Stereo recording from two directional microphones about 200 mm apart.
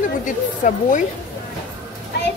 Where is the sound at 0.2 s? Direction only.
40° left (ahead or behind).